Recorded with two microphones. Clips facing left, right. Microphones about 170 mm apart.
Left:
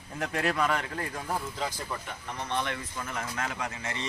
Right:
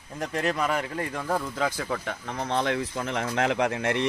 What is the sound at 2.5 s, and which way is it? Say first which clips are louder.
Speech: right 6 dB; 90° right.